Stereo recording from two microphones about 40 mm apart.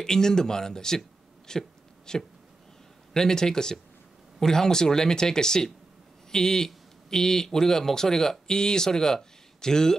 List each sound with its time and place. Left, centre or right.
0.0 s speech: centre
1.5 s a sound: centre
3.1 s speech: centre